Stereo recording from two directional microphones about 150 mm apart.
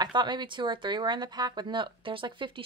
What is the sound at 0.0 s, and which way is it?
Speech, 30° right (ahead or behind).